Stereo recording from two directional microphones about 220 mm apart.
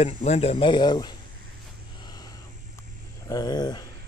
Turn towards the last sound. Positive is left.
turn(degrees=20)  # may be behind; listen again after turning